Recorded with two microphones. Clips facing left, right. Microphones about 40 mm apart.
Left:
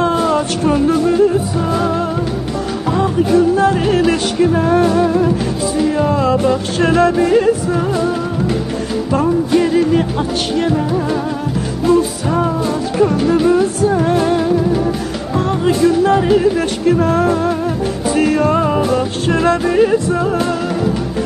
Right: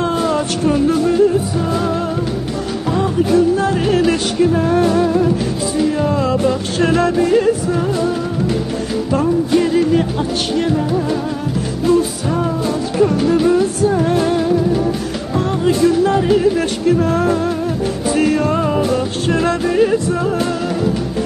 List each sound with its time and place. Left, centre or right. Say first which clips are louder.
0.0 s a sound: left 3 dB; centre
0.7 s music: left 1 dB; centre
9.1 s music: left 1 dB; centre
15.3 s speech: left 1 dB; centre
18.0 s music: left 2 dB; centre